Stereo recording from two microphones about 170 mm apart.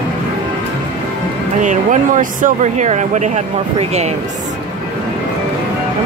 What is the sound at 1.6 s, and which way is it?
Speech, 45° right (ahead or behind).